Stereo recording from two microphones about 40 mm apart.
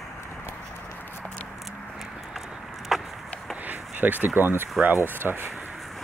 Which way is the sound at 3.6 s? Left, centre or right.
Right.